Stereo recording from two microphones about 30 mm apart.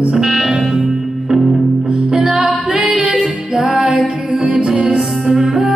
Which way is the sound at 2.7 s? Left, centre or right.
Right.